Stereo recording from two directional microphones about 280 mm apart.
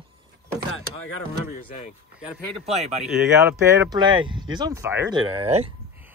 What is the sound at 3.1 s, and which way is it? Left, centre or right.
Speech, centre.